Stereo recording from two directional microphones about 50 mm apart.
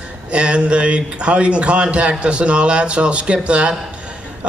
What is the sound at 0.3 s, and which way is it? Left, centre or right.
A man's voice, right.